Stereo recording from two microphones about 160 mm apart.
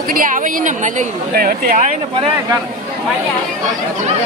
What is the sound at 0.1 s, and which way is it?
A woman's voice, 55° right (ahead or behind).